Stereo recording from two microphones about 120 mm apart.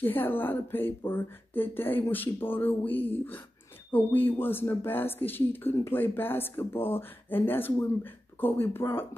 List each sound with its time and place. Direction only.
0.0 s speech: 15° left (ahead or behind)